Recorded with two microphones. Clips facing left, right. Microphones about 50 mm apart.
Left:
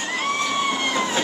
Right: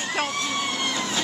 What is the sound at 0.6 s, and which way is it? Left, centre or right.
Vehicle, centre.